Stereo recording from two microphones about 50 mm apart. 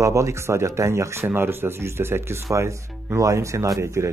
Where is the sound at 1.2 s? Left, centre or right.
Right.